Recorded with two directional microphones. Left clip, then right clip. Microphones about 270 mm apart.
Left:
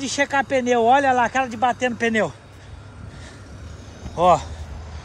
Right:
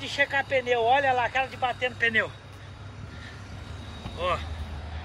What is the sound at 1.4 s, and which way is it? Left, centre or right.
Speech, left.